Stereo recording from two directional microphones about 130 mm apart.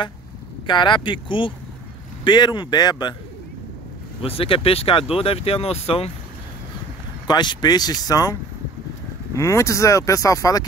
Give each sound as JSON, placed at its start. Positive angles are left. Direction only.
{"t": 0.7, "sound": "speech", "side_deg": 35}
{"t": 4.2, "sound": "speech", "side_deg": 45}
{"t": 7.2, "sound": "speech", "side_deg": 35}